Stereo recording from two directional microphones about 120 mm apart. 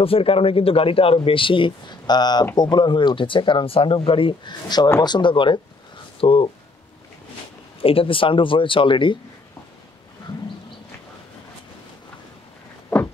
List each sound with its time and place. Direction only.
0.0 s speech: 50° left (ahead or behind)
7.8 s speech: 50° left (ahead or behind)